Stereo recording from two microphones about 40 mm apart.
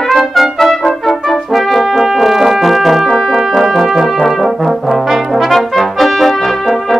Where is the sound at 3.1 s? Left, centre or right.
Centre.